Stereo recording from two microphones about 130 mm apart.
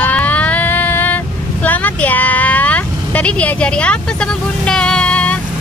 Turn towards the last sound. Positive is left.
turn(degrees=10)  # may be behind; listen again after turning